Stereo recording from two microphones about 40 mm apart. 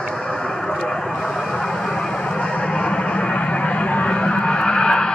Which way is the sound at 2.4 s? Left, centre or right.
Left.